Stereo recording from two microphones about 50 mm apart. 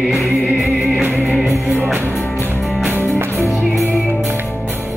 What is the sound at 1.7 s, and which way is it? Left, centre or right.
Music, right.